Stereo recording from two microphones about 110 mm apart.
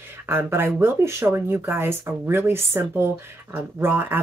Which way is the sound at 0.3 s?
20° right (ahead or behind).